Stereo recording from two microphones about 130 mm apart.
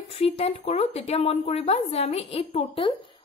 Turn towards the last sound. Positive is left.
turn(degrees=40)  # may be behind; listen again after turning